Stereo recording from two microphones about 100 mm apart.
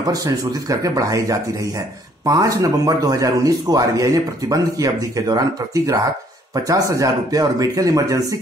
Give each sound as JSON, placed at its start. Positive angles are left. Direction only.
{"t": 0.0, "sound": "speech", "side_deg": -35}
{"t": 6.5, "sound": "speech", "side_deg": -35}